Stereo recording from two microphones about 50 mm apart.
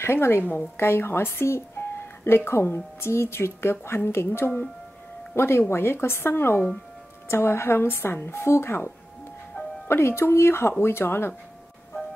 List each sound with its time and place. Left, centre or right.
0.0 s speech: left
5.3 s speech: left